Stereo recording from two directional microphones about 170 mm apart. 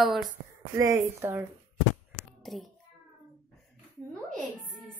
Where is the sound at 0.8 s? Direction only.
20° right (ahead or behind).